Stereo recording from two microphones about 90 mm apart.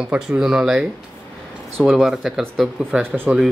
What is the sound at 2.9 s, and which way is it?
Speech, 20° right (ahead or behind).